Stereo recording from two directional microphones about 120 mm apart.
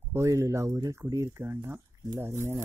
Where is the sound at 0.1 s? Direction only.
25° right (ahead or behind).